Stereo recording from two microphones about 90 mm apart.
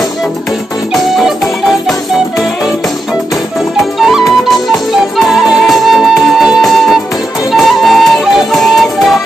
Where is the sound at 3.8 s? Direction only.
Centre (ahead or behind).